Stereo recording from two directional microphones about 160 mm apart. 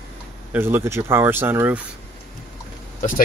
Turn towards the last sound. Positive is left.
turn(degrees=60)  # may be behind; listen again after turning